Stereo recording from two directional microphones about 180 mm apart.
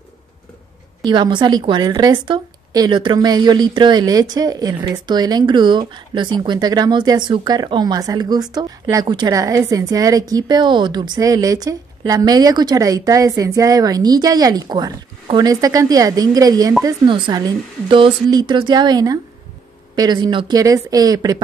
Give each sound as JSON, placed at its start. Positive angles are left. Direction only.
{"t": 1.0, "sound": "speech", "side_deg": -25}